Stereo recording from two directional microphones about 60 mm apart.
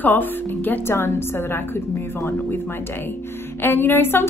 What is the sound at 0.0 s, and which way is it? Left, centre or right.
Speech, left.